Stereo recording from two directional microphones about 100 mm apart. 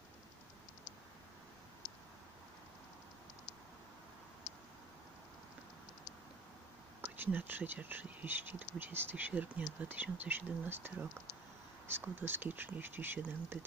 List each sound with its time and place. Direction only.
7.0 s speech: 20° right (ahead or behind)